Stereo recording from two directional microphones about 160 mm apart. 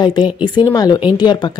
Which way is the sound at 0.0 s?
25° left (ahead or behind).